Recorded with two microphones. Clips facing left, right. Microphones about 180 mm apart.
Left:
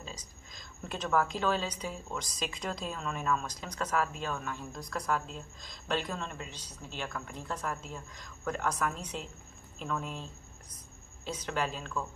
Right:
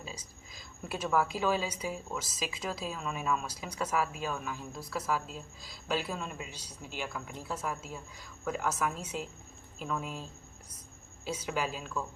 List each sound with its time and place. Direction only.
0.0 s a woman's voice: 10° right (ahead or behind)
11.2 s a woman's voice: 10° right (ahead or behind)